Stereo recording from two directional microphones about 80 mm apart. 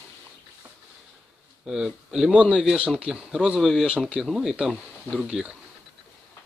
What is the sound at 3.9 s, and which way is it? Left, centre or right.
Speech, centre.